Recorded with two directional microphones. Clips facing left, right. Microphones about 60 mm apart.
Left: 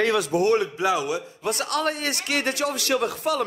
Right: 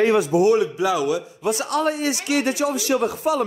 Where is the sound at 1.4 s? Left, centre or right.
Left.